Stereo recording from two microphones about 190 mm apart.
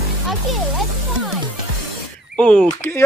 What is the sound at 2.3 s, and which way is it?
Speech, 5° left (ahead or behind).